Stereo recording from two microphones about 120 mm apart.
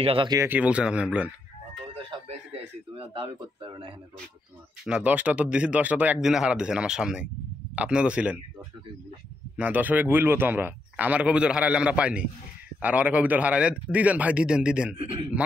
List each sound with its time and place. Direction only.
0.0 s speech: 50° right (ahead or behind)
0.5 s a man's voice: 10° right (ahead or behind)
2.2 s speech: 50° right (ahead or behind)
4.8 s a man's voice: 10° right (ahead or behind)
9.6 s a man's voice: 15° right (ahead or behind)
15.0 s speech: 45° right (ahead or behind)